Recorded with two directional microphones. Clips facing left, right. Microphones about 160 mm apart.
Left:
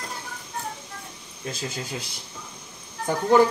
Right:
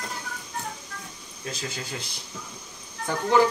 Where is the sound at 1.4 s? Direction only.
25° left (ahead or behind).